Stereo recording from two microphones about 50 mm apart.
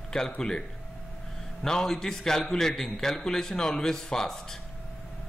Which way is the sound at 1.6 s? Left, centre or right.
Centre.